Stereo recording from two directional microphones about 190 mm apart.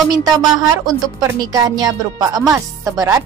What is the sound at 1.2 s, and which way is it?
Speech, 20° right (ahead or behind).